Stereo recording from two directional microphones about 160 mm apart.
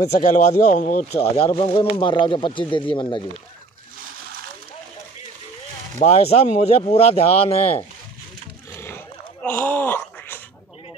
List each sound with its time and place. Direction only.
0.1 s speech: 50° left (ahead or behind)
1.3 s speech: 35° left (ahead or behind)
5.9 s speech: 40° left (ahead or behind)
8.7 s a sound: 15° left (ahead or behind)